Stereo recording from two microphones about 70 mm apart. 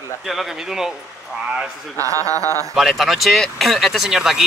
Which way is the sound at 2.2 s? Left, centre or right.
Right.